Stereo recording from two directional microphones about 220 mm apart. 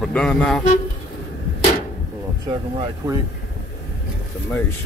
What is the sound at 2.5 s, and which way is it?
Speech, 25° right (ahead or behind).